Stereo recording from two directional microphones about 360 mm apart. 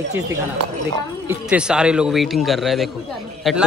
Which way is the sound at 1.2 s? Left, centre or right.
Centre.